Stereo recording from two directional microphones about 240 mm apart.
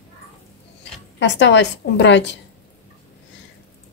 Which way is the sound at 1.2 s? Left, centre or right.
Left.